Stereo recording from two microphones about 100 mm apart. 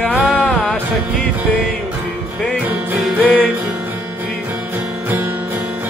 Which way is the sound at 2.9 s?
15° right (ahead or behind).